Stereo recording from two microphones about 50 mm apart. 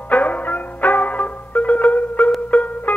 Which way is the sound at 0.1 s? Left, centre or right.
Left.